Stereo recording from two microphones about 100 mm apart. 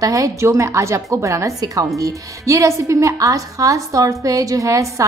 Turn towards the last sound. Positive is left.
turn(degrees=-35)  # may be behind; listen again after turning